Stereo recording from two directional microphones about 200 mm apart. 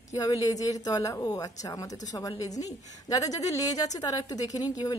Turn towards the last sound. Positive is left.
turn(degrees=20)  # may be behind; listen again after turning